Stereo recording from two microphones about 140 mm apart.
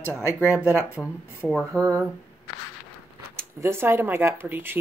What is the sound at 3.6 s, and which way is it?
Speech, 15° right (ahead or behind).